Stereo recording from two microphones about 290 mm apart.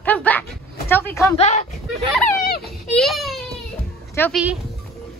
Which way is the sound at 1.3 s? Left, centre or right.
Left.